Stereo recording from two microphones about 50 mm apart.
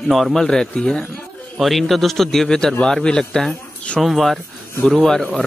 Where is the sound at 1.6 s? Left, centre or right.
Centre.